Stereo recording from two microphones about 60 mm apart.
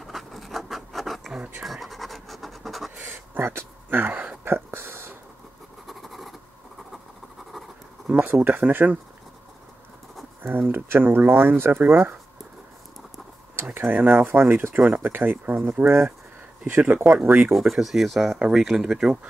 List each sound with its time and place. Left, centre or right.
0.0 s scratch: centre
3.1 s a sound: right
4.5 s a sound: right
5.9 s scratch: centre
8.1 s a sound: right
8.5 s speech: right
10.4 s speech: right
13.8 s speech: right
14.2 s speech: right
17.6 s speech: centre